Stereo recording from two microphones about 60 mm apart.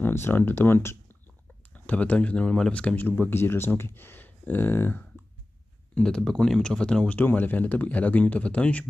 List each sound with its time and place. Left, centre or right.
0.1 s speech: left
1.7 s speech: left
3.1 s speech: left
5.9 s speech: centre
7.2 s speech: left